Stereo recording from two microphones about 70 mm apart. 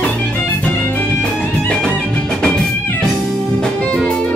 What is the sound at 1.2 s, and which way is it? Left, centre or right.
Music, centre.